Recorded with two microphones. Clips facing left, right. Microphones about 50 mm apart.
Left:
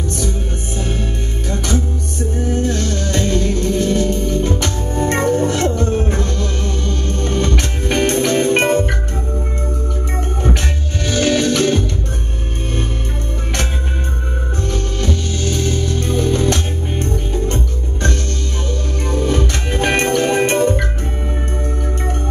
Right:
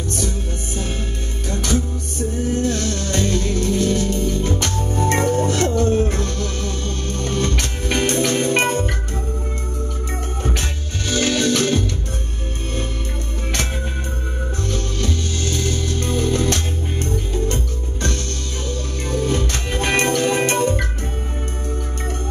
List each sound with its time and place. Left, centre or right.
2.5 s music: left
11.1 s music: left
14.7 s music: left
19.0 s music: left